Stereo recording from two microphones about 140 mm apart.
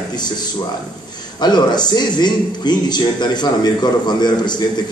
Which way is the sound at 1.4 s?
30° left (ahead or behind).